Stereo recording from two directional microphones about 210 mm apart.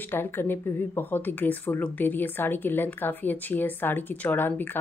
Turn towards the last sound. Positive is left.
turn(degrees=10)  # may be behind; listen again after turning